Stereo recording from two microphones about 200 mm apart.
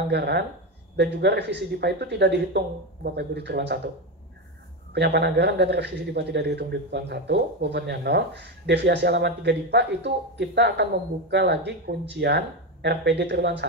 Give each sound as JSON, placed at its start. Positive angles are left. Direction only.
{"t": 0.1, "sound": "a man's voice", "side_deg": -55}
{"t": 4.9, "sound": "a man's voice", "side_deg": -55}